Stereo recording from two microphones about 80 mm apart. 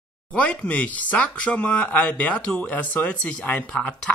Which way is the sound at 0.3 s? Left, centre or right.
Centre.